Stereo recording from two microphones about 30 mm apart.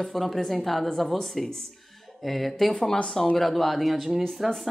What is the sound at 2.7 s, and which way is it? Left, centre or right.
A woman's voice, centre.